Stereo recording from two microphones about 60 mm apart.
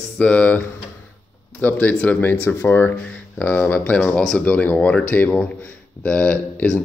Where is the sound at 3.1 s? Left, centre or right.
Left.